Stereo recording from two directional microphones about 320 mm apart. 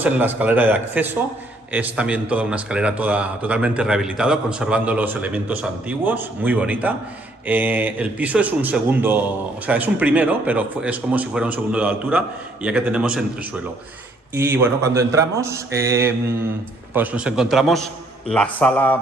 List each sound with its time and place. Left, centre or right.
0.0 s speech: centre